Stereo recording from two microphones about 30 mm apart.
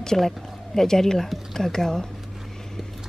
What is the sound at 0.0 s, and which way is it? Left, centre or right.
Speech, centre.